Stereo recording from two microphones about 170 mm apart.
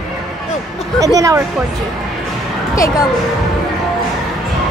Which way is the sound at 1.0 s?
20° right (ahead or behind).